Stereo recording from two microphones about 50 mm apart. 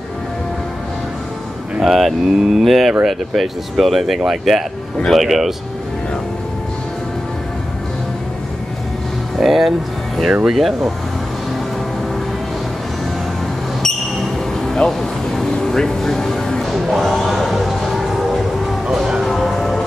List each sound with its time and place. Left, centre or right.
1.8 s speech: centre
9.4 s speech: centre
13.8 s basketball bounce: centre
14.9 s a sound: centre
16.7 s music: centre
18.9 s a sound: centre
19.2 s music: centre